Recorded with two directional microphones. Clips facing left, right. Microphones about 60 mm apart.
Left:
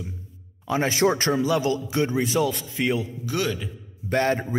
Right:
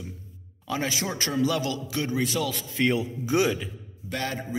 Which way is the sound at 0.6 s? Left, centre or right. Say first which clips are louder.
Left 5 dB; left.